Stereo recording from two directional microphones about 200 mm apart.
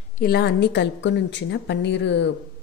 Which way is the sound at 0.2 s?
55° left (ahead or behind).